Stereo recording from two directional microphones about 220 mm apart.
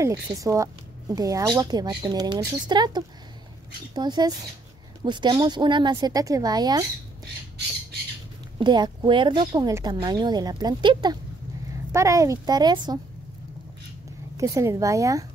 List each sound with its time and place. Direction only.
0.0 s a woman's voice: 15° right (ahead or behind)
8.5 s a woman's voice: 20° right (ahead or behind)
14.3 s speech: 15° right (ahead or behind)